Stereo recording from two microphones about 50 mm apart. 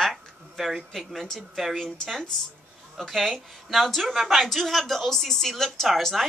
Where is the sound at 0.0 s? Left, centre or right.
Centre.